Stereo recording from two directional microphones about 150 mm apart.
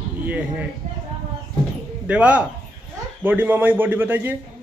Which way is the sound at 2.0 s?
10° right (ahead or behind).